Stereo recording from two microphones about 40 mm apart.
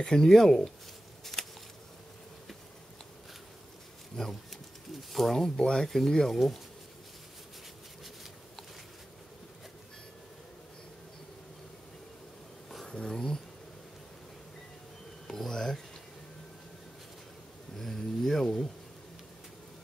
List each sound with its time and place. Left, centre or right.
0.0 s speech: centre
1.2 s a sound: centre
4.2 s speech: centre
5.4 s speech: centre
12.8 s a sound: centre
13.1 s speech: centre
15.2 s speech: centre
17.7 s speech: centre